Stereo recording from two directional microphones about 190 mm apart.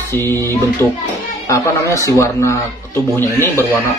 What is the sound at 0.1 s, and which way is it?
Speech, 10° left (ahead or behind).